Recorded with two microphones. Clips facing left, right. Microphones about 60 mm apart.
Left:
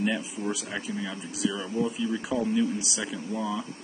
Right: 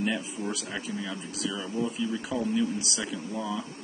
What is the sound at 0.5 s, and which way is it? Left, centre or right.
Speech, centre.